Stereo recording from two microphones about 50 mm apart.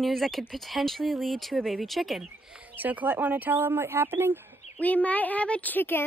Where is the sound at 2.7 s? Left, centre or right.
Right.